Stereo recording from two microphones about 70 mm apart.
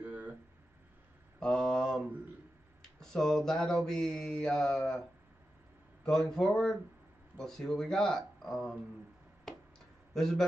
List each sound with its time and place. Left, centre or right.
0.0 s a sound: right
1.4 s mantra: centre
2.8 s speech: centre
6.0 s speech: centre
10.1 s speech: centre